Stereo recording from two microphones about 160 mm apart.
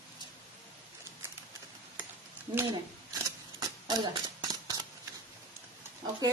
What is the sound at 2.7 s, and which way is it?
Scissors, 25° right (ahead or behind).